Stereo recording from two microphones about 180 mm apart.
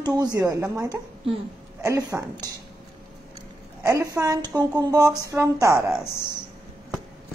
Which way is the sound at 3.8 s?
20° right (ahead or behind).